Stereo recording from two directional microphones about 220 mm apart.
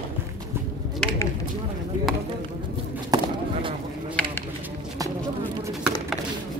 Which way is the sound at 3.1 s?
15° right (ahead or behind).